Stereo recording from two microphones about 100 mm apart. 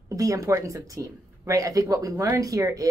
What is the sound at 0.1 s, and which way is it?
Speech, 35° right (ahead or behind).